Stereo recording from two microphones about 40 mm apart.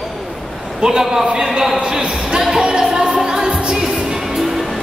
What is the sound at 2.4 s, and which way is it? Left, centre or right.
Music, centre.